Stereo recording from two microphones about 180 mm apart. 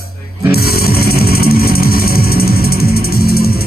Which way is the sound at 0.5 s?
60° left (ahead or behind).